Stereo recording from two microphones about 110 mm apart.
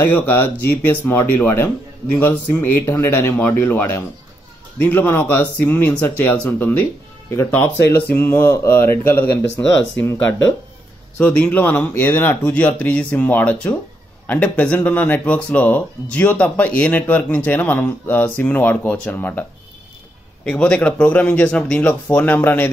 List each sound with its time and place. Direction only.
0.0 s speech: 20° left (ahead or behind)
20.4 s speech: 10° left (ahead or behind)